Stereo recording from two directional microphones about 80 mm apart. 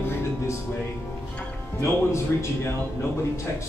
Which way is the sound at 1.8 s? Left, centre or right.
Left.